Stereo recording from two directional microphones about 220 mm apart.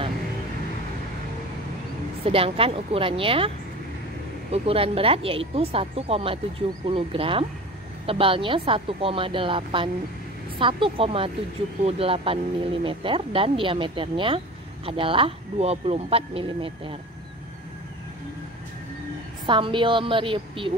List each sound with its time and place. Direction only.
2.2 s speech: 25° right (ahead or behind)
19.4 s speech: 20° right (ahead or behind)